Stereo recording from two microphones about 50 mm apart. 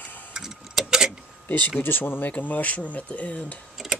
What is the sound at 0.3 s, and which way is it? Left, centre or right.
Clock, centre.